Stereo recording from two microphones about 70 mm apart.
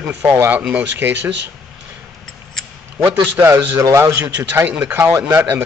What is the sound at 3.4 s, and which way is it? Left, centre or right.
Speech, right.